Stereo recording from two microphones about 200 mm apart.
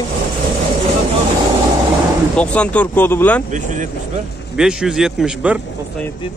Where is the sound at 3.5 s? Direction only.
40° right (ahead or behind).